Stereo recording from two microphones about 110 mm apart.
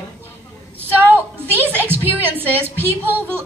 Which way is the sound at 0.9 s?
15° right (ahead or behind).